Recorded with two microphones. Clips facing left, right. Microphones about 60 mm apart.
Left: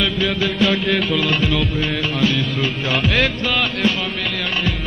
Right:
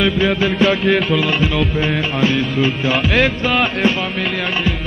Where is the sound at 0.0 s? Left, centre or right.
Right.